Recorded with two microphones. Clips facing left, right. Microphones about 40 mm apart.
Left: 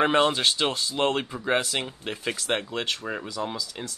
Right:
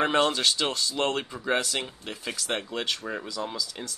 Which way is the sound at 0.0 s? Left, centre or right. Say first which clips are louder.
Left 2 dB; centre.